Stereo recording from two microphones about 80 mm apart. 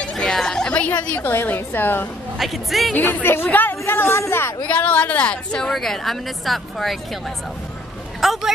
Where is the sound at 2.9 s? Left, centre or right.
Centre.